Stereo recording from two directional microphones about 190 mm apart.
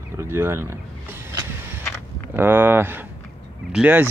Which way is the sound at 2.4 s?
10° right (ahead or behind).